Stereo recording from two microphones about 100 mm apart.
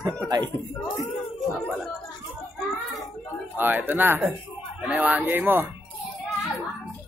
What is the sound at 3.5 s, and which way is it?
Speech, 20° right (ahead or behind).